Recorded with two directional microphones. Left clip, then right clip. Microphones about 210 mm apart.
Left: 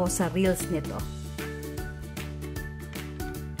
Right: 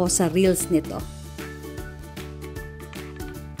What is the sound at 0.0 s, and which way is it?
Speech, 20° right (ahead or behind).